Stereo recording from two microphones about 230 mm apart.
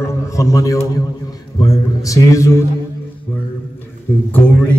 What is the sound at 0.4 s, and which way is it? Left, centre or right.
A man's voice, centre.